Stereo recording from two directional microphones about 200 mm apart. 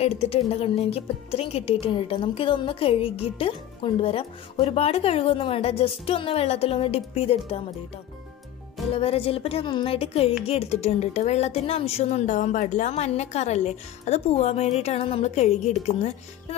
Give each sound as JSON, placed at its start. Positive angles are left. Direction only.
{"t": 0.0, "sound": "speech", "side_deg": 30}
{"t": 8.9, "sound": "speech", "side_deg": 30}